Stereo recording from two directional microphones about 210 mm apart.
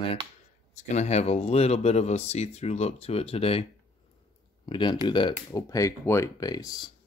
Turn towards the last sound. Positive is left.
turn(degrees=20)  # may be behind; listen again after turning